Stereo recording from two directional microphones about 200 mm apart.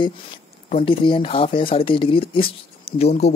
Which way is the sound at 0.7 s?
30° left (ahead or behind).